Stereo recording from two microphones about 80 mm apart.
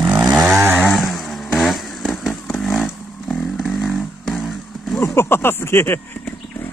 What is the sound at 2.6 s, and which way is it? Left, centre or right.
Motorcycle, centre.